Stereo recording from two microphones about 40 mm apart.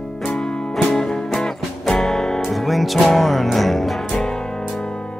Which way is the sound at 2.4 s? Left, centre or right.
Centre.